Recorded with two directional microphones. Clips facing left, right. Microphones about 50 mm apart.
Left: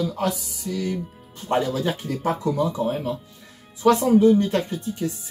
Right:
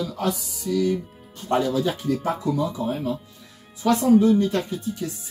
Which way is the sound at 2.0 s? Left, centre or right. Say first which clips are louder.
Even; left.